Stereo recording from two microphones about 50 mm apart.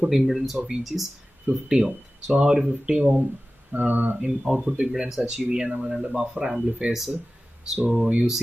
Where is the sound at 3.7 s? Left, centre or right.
Right.